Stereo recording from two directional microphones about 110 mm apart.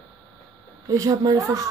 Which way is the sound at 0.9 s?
30° right (ahead or behind).